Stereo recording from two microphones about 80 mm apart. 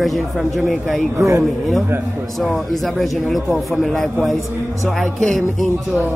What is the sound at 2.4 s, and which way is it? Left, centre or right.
Speech, centre.